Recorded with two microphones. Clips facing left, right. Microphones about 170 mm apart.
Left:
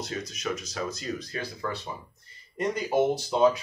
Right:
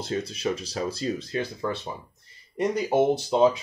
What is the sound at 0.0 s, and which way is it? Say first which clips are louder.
Speech: right 5 dB; 30° right (ahead or behind).